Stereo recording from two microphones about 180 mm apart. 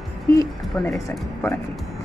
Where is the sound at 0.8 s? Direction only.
10° left (ahead or behind).